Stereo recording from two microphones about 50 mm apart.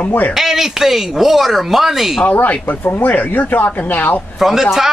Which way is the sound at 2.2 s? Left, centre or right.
Left.